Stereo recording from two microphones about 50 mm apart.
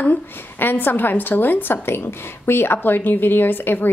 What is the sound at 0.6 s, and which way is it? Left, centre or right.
A woman's voice, left.